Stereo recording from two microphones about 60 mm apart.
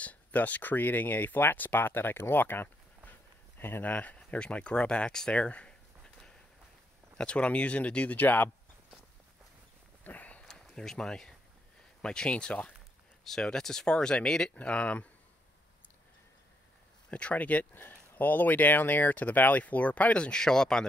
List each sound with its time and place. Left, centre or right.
0.0 s speech: left
10.0 s a sound: left
10.4 s a sound: centre
12.0 s speech: centre
14.6 s speech: left
17.1 s speech: left